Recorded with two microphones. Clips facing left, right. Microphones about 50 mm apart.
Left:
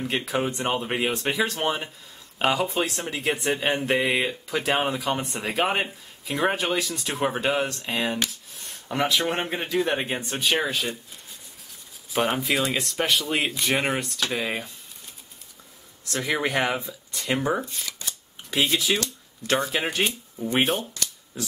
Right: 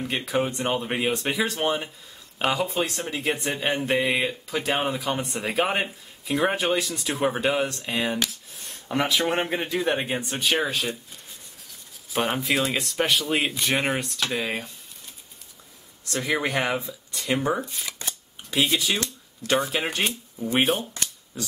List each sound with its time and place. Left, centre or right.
0.0 s speech: centre
12.1 s speech: centre
16.1 s speech: centre
17.8 s shuffling cards: right
18.5 s speech: centre